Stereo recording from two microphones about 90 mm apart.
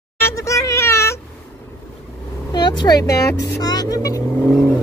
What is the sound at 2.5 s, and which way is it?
Vehicle, 55° left (ahead or behind).